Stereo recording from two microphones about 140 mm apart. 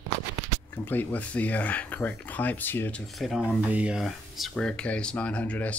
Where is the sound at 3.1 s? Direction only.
Centre (ahead or behind).